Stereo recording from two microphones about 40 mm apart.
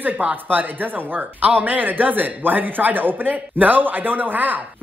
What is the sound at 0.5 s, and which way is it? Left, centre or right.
Speech, right.